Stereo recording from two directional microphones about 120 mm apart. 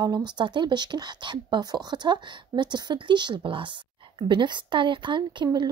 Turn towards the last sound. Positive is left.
turn(degrees=-40)  # may be behind; listen again after turning